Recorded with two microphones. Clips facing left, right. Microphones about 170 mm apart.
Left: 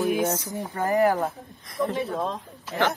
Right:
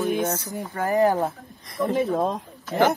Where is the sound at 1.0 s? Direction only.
20° right (ahead or behind).